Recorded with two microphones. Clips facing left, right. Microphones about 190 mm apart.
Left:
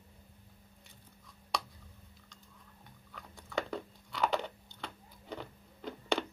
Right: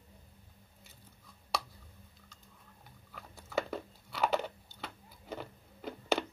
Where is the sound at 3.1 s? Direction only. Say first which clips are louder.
Right 2 dB; 5° right (ahead or behind).